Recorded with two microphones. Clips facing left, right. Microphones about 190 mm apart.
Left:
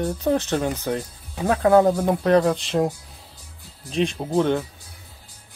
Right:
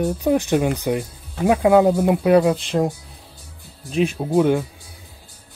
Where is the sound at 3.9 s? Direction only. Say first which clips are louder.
Right 3 dB; 5° right (ahead or behind).